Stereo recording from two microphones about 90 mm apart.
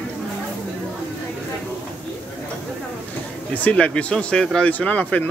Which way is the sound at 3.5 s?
15° left (ahead or behind).